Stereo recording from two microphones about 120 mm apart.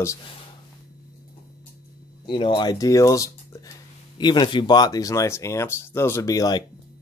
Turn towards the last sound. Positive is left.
turn(degrees=30)  # may be behind; listen again after turning